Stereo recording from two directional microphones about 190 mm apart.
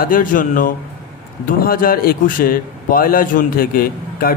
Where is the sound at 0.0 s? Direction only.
45° left (ahead or behind).